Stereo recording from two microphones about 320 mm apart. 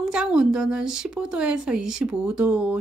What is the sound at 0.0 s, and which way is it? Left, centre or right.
Speech, centre.